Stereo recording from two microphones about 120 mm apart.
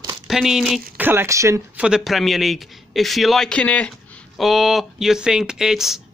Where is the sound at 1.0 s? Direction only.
20° right (ahead or behind).